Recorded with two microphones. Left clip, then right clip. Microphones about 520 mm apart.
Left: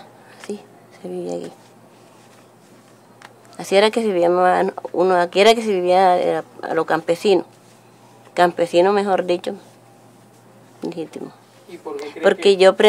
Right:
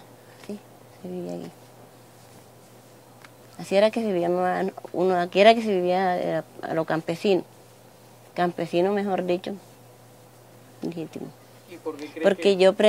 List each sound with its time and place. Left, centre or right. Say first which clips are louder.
1.0 s speech: left 7 dB; right
3.5 s speech: left 5 dB; right
10.8 s speech: left 5 dB; right
12.2 s speech: left 6 dB; right